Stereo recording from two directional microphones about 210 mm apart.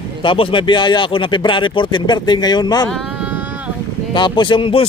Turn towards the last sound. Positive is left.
turn(degrees=25)  # may be behind; listen again after turning